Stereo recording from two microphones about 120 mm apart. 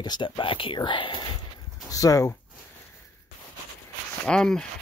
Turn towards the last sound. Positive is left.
turn(degrees=5)  # may be behind; listen again after turning